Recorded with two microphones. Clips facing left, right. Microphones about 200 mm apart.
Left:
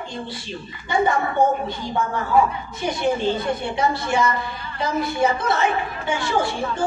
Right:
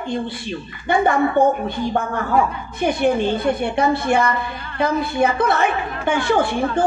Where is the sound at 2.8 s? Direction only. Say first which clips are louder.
Right 4 dB; 55° right (ahead or behind).